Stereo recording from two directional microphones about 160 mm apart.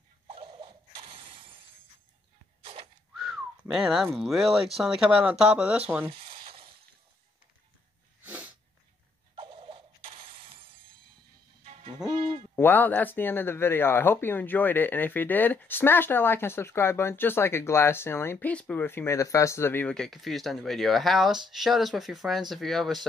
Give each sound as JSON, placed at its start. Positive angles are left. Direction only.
{"t": 0.3, "sound": "mechanisms", "side_deg": -30}
{"t": 2.6, "sound": "whistling", "side_deg": -35}
{"t": 3.2, "sound": "speech", "side_deg": -5}
{"t": 6.0, "sound": "a sound", "side_deg": -35}
{"t": 8.2, "sound": "sneeze", "side_deg": -10}
{"t": 9.3, "sound": "a sound", "side_deg": -30}
{"t": 12.0, "sound": "hoot", "side_deg": -5}
{"t": 12.5, "sound": "speech", "side_deg": 10}